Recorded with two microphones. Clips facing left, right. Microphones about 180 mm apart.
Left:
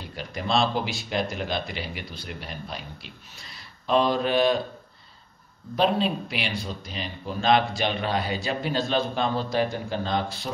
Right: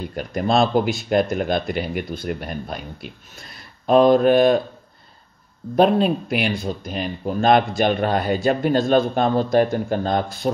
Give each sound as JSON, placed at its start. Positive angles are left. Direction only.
{"t": 0.0, "sound": "speech", "side_deg": -50}
{"t": 5.8, "sound": "speech", "side_deg": -50}